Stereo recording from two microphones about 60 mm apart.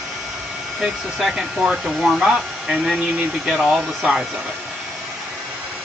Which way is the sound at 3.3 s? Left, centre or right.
Centre.